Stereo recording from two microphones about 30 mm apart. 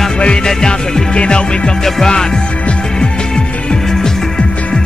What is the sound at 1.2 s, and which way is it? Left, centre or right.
Music, left.